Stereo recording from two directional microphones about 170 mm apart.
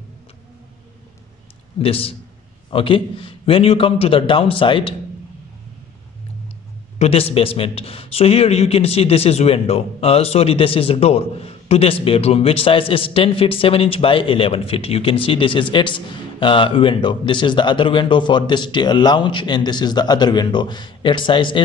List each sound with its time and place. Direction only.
1.8 s a man's voice: 35° left (ahead or behind)
7.0 s a man's voice: 35° left (ahead or behind)